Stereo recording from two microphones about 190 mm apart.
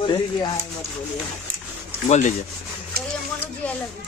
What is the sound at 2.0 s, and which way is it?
Speech, 35° left (ahead or behind).